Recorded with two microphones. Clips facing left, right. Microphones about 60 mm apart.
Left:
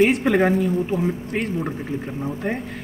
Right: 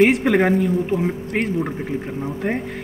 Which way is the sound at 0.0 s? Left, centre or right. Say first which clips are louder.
Right 2 dB; right.